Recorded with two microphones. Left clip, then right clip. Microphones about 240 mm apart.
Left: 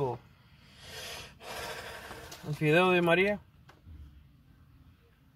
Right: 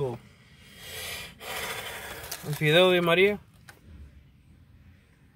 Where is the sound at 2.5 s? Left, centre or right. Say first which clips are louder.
Right 4 dB; right.